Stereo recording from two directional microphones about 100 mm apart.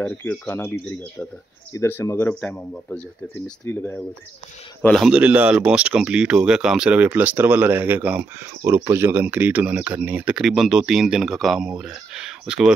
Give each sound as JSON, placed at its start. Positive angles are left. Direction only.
{"t": 0.0, "sound": "a man's voice", "side_deg": 15}
{"t": 5.1, "sound": "speech", "side_deg": -15}
{"t": 8.6, "sound": "speech", "side_deg": -25}